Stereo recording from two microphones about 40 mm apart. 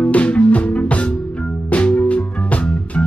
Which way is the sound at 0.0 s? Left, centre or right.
Left.